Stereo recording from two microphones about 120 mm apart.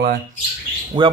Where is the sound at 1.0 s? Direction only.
45° right (ahead or behind).